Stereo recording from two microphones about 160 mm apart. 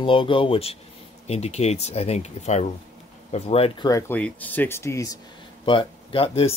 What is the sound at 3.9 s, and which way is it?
Speech, 10° left (ahead or behind).